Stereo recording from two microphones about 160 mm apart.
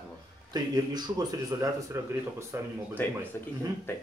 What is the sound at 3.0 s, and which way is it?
Speech, 10° left (ahead or behind).